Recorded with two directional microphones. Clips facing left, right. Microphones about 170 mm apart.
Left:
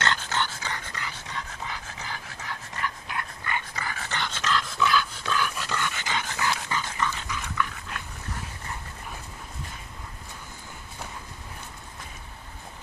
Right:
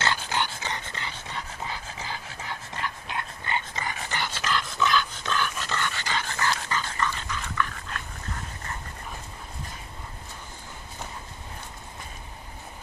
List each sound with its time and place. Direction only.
0.0 s dog: 10° right (ahead or behind)
4.2 s dog: 5° right (ahead or behind)